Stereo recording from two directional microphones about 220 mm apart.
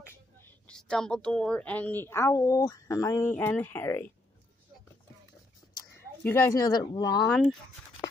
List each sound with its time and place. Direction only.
0.0 s a woman's voice: 10° left (ahead or behind)
5.8 s speech: 10° left (ahead or behind)
7.2 s speech: centre (ahead or behind)